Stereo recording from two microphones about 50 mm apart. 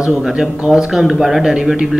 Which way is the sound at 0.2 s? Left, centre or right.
Centre.